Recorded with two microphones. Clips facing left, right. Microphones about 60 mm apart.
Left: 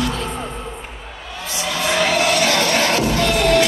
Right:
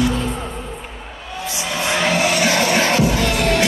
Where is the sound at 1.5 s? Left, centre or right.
Centre.